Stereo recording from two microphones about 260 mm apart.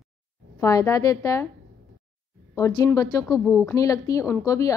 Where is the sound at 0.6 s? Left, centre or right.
Centre.